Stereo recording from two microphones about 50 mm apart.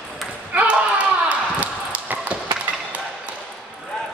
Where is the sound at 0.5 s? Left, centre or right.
Right.